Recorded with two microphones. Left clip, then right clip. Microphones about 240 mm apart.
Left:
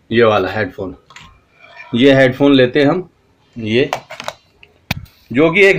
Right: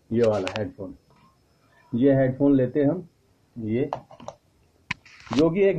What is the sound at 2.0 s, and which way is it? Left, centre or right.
Speech, centre.